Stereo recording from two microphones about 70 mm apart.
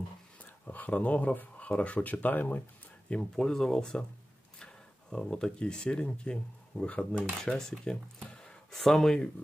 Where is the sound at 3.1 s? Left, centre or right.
Centre.